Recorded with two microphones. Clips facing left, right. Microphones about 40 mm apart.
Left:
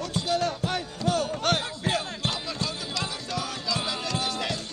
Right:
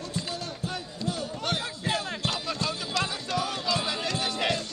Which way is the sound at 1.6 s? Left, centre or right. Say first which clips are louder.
Left 2 dB; left.